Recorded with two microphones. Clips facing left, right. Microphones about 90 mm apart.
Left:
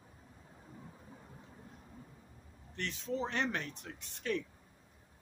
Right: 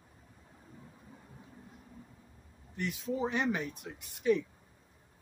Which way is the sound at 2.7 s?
10° right (ahead or behind).